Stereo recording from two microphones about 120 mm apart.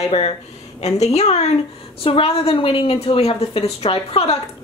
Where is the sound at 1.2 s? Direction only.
65° left (ahead or behind).